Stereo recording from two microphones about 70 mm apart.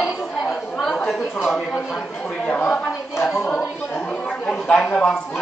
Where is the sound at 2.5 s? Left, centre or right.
Left.